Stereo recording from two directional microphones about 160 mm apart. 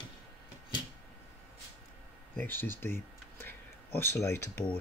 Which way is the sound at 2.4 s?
10° left (ahead or behind).